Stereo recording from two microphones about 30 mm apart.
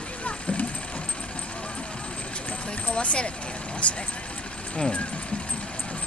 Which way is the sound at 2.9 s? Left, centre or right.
Left.